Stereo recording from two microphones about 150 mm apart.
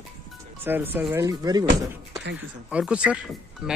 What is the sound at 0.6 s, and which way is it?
Speech, 15° right (ahead or behind).